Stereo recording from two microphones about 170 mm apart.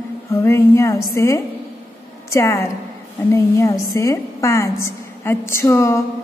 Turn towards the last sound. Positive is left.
turn(degrees=15)  # may be behind; listen again after turning